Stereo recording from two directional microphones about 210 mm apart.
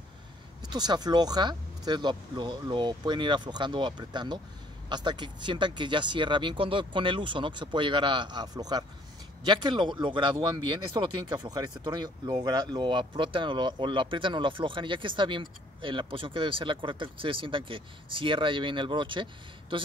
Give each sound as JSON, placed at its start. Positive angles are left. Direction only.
{"t": 0.6, "sound": "speech", "side_deg": -20}